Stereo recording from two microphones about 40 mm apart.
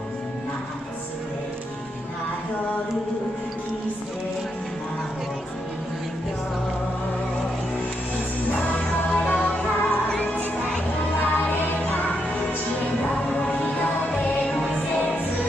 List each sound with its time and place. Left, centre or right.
8.5 s music: left
11.1 s music: left
13.1 s music: left